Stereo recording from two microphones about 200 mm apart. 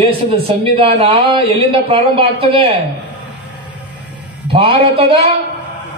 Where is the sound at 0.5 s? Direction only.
30° right (ahead or behind).